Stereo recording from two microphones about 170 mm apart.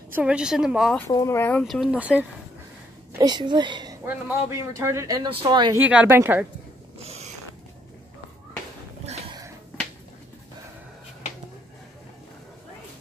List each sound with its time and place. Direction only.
0.1 s a woman's voice: 5° right (ahead or behind)
1.1 s speech: 15° left (ahead or behind)
1.6 s a woman's voice: centre (ahead or behind)
3.1 s a woman's voice: 25° right (ahead or behind)
5.8 s a woman's voice: 10° right (ahead or behind)